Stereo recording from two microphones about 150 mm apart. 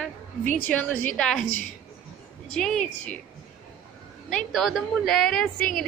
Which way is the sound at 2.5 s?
5° left (ahead or behind).